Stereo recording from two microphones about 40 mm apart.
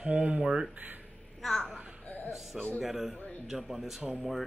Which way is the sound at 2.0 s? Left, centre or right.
Left.